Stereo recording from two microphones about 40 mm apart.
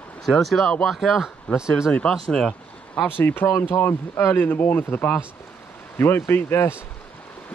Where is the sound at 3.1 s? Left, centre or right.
Left.